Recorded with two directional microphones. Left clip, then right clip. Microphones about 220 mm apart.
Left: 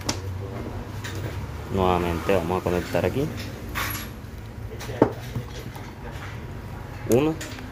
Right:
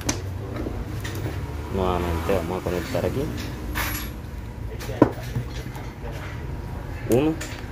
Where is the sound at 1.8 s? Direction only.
25° left (ahead or behind).